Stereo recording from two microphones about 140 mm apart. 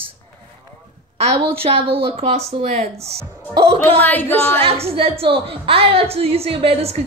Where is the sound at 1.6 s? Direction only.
45° right (ahead or behind).